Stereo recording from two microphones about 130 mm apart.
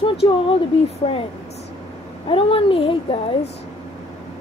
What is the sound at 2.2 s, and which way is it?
Speech, 45° left (ahead or behind).